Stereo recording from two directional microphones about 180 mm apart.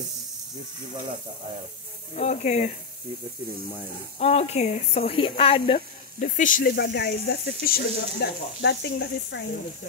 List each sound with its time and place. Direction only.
2.1 s speech: 40° left (ahead or behind)
4.2 s speech: 35° left (ahead or behind)
6.1 s speech: 45° left (ahead or behind)
8.5 s speech: 75° left (ahead or behind)